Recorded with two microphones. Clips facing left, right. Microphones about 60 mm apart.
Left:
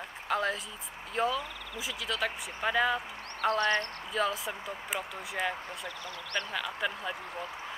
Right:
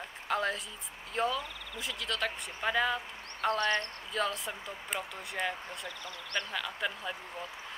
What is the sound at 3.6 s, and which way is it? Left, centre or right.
Speech, left.